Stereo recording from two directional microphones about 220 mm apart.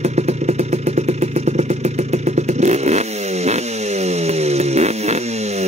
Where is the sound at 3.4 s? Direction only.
30° right (ahead or behind).